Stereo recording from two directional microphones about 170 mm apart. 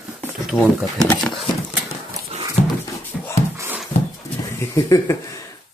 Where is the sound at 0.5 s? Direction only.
5° right (ahead or behind).